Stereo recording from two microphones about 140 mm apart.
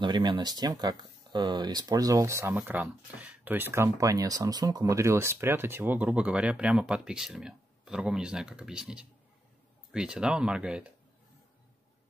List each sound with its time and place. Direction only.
0.0 s speech: 30° right (ahead or behind); by 10.9 s 5° right (ahead or behind)